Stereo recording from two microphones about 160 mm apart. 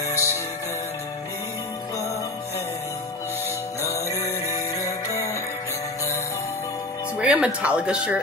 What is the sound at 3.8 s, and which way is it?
Music, 20° left (ahead or behind).